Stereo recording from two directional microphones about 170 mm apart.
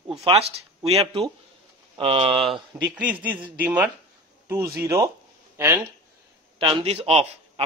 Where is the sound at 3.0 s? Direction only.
10° right (ahead or behind).